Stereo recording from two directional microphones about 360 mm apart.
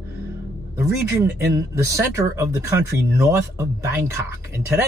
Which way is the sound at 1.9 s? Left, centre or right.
Centre.